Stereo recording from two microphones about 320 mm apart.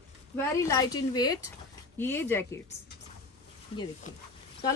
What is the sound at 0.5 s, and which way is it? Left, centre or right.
Speech, centre.